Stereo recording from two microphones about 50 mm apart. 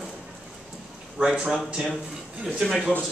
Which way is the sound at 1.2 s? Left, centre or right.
Centre.